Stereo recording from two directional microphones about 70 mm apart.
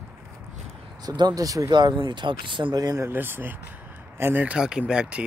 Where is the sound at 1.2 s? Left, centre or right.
Right.